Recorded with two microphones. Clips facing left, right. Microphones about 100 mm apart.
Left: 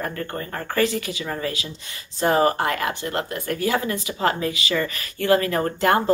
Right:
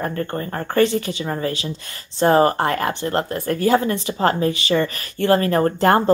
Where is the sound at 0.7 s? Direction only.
35° right (ahead or behind).